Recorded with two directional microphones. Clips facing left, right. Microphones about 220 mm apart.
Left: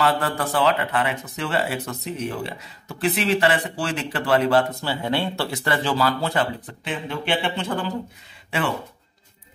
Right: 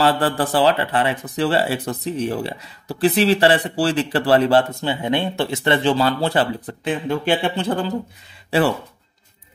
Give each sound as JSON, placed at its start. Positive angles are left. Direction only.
{"t": 0.0, "sound": "speech", "side_deg": -30}
{"t": 5.0, "sound": "speech", "side_deg": -20}